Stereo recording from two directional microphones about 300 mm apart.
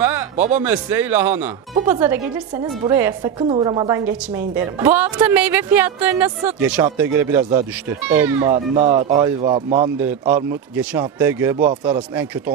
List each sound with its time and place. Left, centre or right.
0.6 s speech: centre
8.7 s speech: right
9.1 s speech: centre